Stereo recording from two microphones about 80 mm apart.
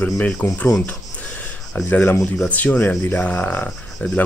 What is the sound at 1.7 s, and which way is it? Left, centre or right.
Speech, left.